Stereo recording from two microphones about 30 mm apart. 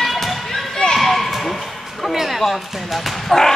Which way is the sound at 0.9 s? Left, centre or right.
Centre.